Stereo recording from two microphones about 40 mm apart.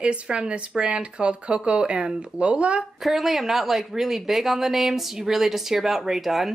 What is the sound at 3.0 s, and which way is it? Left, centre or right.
A woman's voice, centre.